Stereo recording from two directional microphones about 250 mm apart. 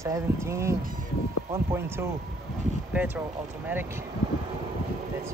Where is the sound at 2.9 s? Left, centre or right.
Centre.